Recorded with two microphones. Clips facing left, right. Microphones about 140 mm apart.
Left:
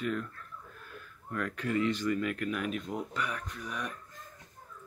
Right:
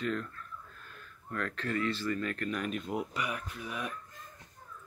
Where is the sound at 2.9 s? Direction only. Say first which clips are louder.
Right 1 dB; 10° right (ahead or behind).